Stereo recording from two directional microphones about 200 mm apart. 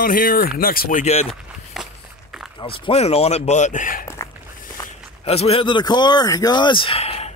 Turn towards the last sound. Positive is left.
turn(degrees=30)  # may be behind; listen again after turning